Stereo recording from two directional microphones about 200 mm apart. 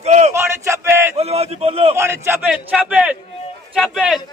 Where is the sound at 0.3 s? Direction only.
10° right (ahead or behind).